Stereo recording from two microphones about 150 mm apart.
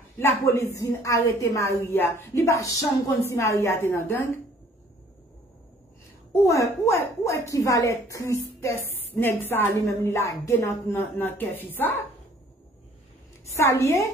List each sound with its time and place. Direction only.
0.2 s a woman's voice: 15° left (ahead or behind)
6.3 s a woman's voice: 20° left (ahead or behind)
13.6 s a woman's voice: 20° left (ahead or behind)